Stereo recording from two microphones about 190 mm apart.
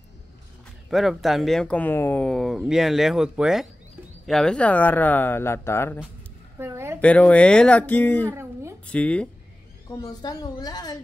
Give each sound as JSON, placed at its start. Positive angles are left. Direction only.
{"t": 0.8, "sound": "speech", "side_deg": 0}
{"t": 6.6, "sound": "a sound", "side_deg": -15}
{"t": 7.0, "sound": "speech", "side_deg": 5}
{"t": 8.3, "sound": "a sound", "side_deg": -15}
{"t": 8.8, "sound": "speech", "side_deg": 5}
{"t": 9.8, "sound": "a woman's voice", "side_deg": 20}